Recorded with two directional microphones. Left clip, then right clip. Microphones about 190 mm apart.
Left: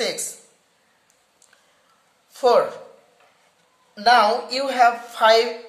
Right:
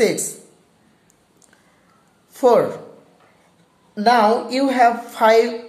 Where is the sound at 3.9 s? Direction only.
5° left (ahead or behind).